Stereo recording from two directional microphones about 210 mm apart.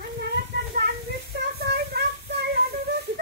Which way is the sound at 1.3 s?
50° right (ahead or behind).